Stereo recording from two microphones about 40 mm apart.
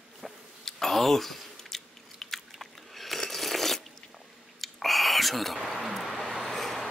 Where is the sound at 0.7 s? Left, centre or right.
Centre.